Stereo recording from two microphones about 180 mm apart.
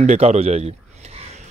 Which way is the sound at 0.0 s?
40° right (ahead or behind).